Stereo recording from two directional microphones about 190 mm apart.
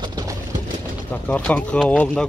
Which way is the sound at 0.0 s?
20° right (ahead or behind).